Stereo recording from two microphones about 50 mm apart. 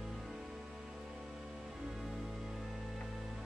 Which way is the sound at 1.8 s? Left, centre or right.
Centre.